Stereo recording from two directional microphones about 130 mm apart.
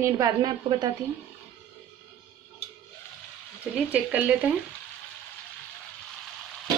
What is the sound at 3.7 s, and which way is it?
Speech, 10° right (ahead or behind).